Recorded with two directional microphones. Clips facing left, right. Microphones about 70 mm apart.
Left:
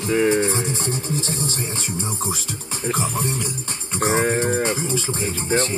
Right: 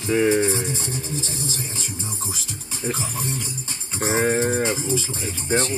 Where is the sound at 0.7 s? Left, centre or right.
Left.